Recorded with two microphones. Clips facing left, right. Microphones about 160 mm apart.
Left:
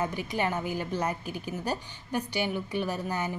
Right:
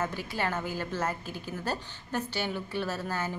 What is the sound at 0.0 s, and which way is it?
A woman's voice, 15° left (ahead or behind).